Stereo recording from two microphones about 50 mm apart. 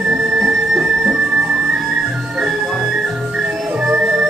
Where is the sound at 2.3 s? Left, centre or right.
Centre.